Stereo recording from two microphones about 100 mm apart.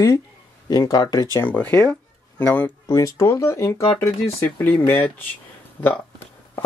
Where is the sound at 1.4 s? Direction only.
15° left (ahead or behind).